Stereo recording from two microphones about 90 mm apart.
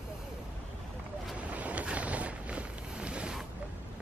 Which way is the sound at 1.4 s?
15° right (ahead or behind).